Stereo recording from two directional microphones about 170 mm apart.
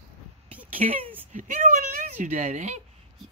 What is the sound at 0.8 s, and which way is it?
Speech, 45° right (ahead or behind).